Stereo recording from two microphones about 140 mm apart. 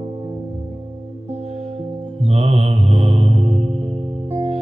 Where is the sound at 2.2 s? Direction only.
50° right (ahead or behind).